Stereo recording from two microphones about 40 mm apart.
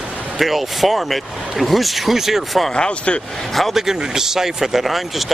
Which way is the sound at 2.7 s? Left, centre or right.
Left.